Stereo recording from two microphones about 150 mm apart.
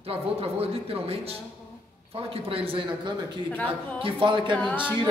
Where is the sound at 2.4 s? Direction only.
35° right (ahead or behind).